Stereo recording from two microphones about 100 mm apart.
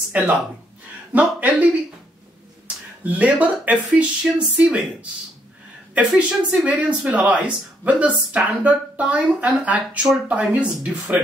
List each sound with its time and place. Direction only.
0.1 s speech: 15° right (ahead or behind)
3.0 s speech: 15° right (ahead or behind)
4.2 s speech: 5° right (ahead or behind)
4.6 s speech: 15° right (ahead or behind)
5.9 s speech: 10° right (ahead or behind)